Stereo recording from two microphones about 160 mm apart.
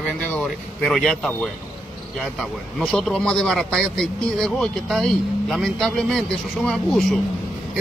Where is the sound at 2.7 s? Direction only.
5° left (ahead or behind).